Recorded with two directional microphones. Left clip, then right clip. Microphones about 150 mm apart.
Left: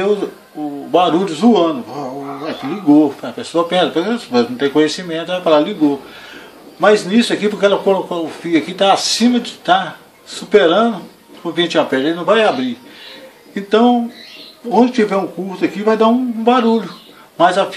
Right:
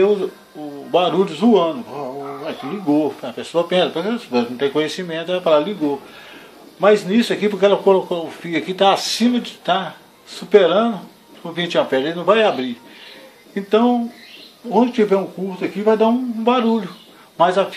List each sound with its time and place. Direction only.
0.9 s speech: 25° right (ahead or behind)
6.8 s speech: 25° right (ahead or behind)